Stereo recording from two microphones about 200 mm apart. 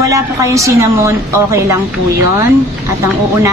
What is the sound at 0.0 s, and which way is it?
A woman's voice, 15° right (ahead or behind).